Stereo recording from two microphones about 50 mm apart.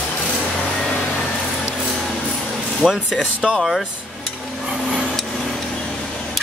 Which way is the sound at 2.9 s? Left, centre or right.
Centre.